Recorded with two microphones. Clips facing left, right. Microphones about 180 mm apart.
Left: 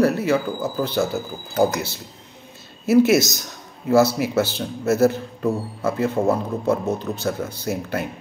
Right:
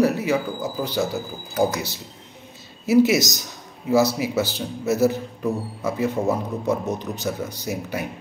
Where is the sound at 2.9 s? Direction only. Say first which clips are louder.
Left 2 dB; 55° left (ahead or behind).